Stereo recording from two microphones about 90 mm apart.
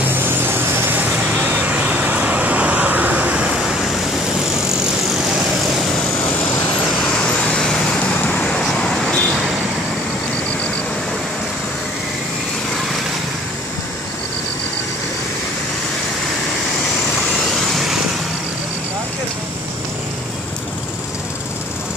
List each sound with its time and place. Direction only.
0.0 s vehicle: 25° right (ahead or behind); by 3.9 s 5° right (ahead or behind)
7.4 s vehicle: 10° left (ahead or behind)
17.6 s vehicle: centre (ahead or behind)